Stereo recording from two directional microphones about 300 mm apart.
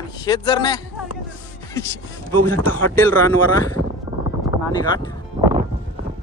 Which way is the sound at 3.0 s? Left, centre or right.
Centre.